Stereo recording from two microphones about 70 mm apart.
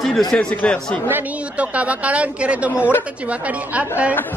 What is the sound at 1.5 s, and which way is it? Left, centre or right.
Speech, centre.